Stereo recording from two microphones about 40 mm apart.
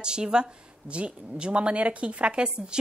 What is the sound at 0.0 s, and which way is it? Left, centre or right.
A woman's voice, right.